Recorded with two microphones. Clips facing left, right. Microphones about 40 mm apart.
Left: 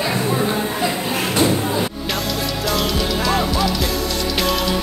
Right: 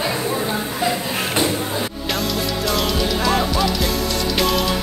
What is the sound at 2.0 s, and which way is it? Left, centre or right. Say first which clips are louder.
Music: even; centre.